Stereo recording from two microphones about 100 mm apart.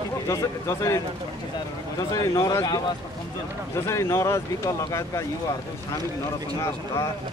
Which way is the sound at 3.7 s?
25° left (ahead or behind).